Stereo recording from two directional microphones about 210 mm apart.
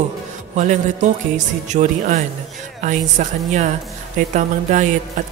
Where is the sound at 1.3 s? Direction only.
35° right (ahead or behind).